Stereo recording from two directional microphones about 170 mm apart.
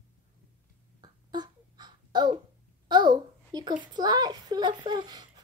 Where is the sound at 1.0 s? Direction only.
25° right (ahead or behind).